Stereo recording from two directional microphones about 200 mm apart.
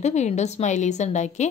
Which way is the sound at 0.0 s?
35° left (ahead or behind).